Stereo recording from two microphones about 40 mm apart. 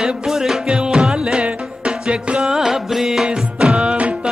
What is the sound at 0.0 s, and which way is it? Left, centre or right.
Music, centre.